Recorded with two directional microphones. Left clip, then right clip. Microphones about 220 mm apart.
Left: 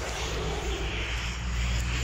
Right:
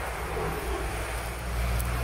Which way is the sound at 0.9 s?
40° right (ahead or behind).